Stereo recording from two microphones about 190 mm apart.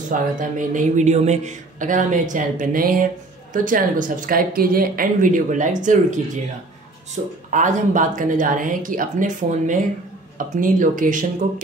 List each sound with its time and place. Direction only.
0.1 s a man's voice: 45° right (ahead or behind)
7.5 s a man's voice: 40° right (ahead or behind)